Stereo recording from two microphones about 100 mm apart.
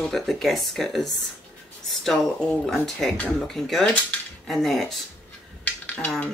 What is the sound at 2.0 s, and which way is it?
Speech, 5° left (ahead or behind).